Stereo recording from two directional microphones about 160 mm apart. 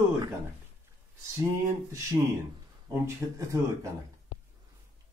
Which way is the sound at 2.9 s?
20° right (ahead or behind).